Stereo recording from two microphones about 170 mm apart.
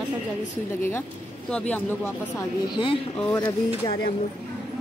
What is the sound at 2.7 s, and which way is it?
Speech, 30° left (ahead or behind).